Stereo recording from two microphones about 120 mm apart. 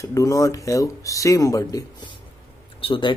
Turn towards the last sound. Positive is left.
turn(degrees=45)  # may be behind; listen again after turning